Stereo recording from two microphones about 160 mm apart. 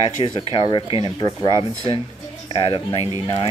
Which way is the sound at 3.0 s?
20° right (ahead or behind).